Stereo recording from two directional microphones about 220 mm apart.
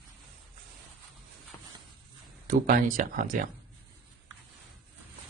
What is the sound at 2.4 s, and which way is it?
A man's voice, 40° right (ahead or behind).